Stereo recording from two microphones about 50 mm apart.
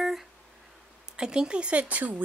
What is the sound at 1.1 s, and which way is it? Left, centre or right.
Speech, centre.